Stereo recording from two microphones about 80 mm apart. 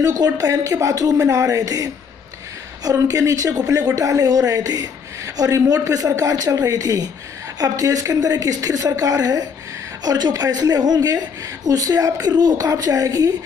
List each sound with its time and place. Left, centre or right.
0.0 s speech: right